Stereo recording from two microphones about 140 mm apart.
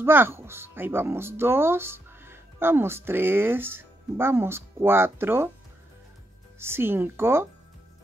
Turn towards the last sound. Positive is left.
turn(degrees=-15)  # may be behind; listen again after turning